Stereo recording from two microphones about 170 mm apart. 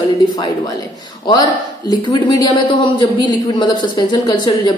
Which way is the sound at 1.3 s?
25° left (ahead or behind).